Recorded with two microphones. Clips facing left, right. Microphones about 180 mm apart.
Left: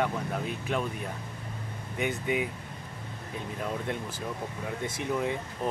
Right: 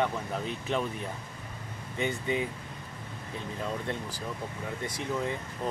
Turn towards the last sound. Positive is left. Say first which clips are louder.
# left 2 dB
turn(degrees=15)  # may be behind; listen again after turning